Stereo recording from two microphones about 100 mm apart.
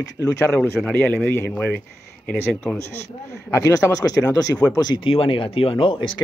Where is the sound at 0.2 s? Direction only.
5° left (ahead or behind).